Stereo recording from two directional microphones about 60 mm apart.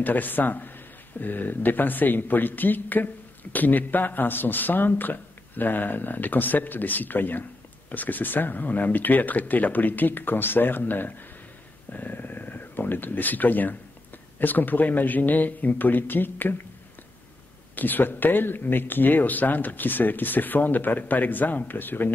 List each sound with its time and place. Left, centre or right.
0.0 s speech: left
17.7 s speech: left